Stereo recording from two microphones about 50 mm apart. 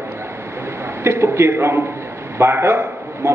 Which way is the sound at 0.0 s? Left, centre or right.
Right.